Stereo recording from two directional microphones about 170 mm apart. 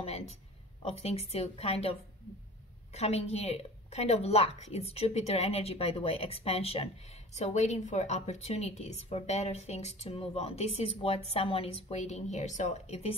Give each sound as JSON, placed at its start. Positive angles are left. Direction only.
{"t": 0.0, "sound": "a woman's voice", "side_deg": 40}